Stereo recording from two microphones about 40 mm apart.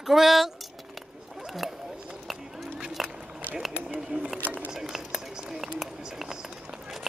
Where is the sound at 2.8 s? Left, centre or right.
Centre.